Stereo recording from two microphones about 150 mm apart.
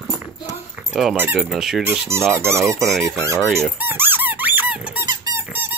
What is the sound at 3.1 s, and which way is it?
Speech, 20° right (ahead or behind).